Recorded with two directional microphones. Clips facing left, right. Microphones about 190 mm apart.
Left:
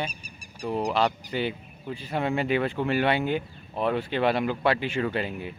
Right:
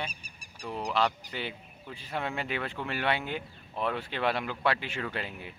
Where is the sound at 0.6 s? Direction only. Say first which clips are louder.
Left 8 dB; 40° left (ahead or behind).